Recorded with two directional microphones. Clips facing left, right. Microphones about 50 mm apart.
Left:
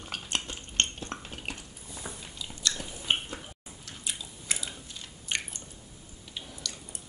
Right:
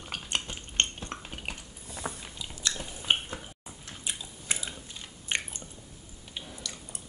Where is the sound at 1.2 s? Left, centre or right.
Centre.